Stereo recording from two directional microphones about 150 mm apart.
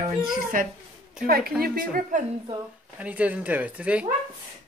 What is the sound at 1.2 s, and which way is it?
Speech, 80° right.